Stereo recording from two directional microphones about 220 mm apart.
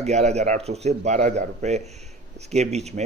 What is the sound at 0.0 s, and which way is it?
A man's voice, 30° right (ahead or behind).